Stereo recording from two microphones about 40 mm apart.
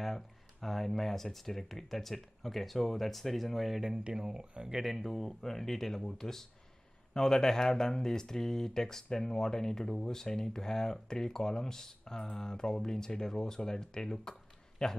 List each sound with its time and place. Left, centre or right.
0.0 s speech: centre
4.1 s speech: centre
4.8 s speech: centre